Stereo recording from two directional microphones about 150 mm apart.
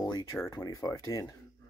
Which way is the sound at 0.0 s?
25° left (ahead or behind).